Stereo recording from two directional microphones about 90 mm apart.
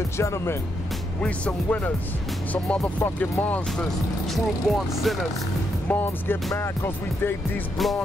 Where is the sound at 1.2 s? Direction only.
15° left (ahead or behind).